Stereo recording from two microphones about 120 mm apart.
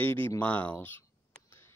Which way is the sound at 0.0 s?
15° left (ahead or behind).